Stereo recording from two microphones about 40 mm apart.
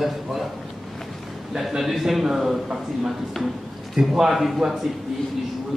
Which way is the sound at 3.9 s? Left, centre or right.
Centre.